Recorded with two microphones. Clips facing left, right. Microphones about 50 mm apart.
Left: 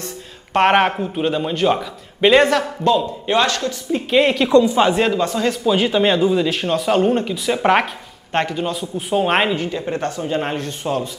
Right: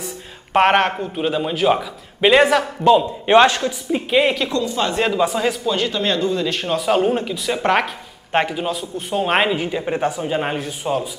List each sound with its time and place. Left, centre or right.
0.0 s speech: centre
2.8 s speech: centre
4.1 s speech: centre
4.5 s a man's voice: left
4.9 s a man's voice: centre
5.7 s speech: centre
8.3 s speech: centre
9.6 s a man's voice: centre